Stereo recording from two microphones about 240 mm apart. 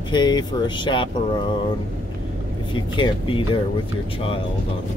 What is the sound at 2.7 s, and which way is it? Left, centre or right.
Speech, left.